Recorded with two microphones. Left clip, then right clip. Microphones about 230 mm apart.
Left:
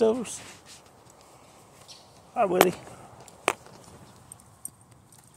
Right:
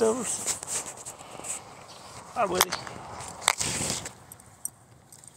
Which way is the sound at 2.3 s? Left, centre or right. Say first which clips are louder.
Left 2 dB; left.